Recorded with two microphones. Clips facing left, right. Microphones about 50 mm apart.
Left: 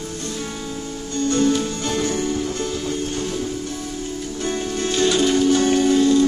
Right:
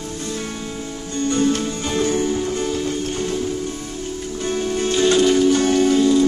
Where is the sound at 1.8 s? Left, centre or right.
Centre.